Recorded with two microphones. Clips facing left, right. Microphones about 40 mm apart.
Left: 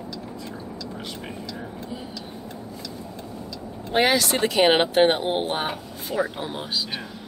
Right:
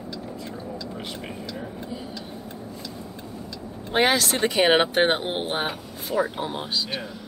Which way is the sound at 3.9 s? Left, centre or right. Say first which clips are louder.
Left 1 dB; centre.